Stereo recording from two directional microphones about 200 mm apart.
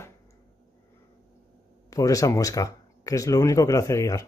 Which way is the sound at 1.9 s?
15° left (ahead or behind).